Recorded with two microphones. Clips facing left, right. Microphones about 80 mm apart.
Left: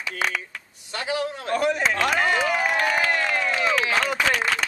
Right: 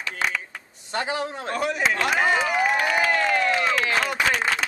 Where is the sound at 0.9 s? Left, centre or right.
Right.